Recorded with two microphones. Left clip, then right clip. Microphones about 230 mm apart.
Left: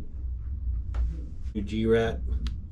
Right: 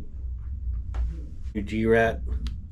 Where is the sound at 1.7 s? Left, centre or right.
Centre.